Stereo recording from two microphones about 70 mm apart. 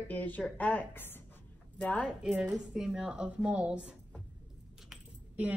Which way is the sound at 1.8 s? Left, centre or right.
Centre.